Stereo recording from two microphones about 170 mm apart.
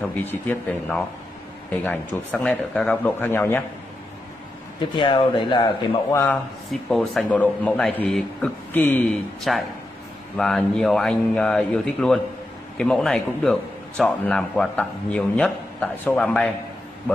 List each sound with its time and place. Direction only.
0.1 s a man's voice: 10° left (ahead or behind)
4.9 s speech: 30° left (ahead or behind)
6.7 s a man's voice: centre (ahead or behind)